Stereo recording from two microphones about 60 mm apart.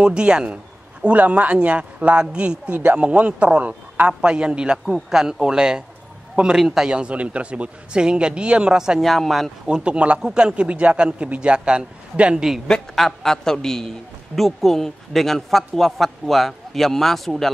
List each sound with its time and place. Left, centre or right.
0.0 s a man's voice: centre
9.0 s a man's voice: centre
9.7 s a man's voice: centre
12.6 s a man's voice: centre